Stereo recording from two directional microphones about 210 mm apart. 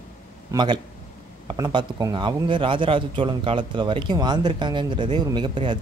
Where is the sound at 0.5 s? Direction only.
20° right (ahead or behind).